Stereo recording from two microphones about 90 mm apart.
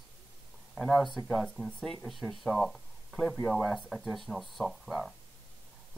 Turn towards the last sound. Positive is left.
turn(degrees=0)  # may be behind; listen again after turning